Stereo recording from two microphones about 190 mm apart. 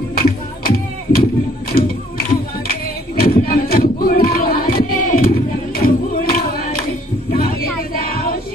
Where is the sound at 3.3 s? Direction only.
50° left (ahead or behind).